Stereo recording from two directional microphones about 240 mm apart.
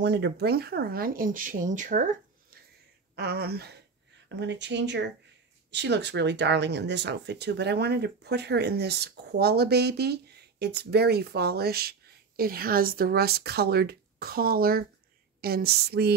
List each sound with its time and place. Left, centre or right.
0.0 s speech: right
3.2 s speech: right